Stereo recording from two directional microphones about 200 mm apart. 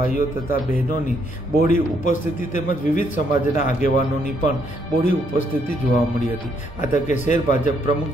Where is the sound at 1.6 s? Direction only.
40° left (ahead or behind).